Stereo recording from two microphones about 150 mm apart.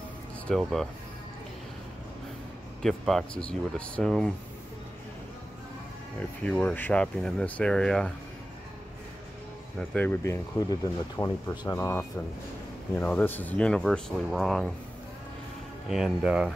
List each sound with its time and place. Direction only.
0.5 s speech: centre (ahead or behind)
2.8 s speech: centre (ahead or behind)
6.4 s speech: 5° left (ahead or behind)
9.8 s speech: 10° left (ahead or behind)
15.9 s speech: 5° right (ahead or behind)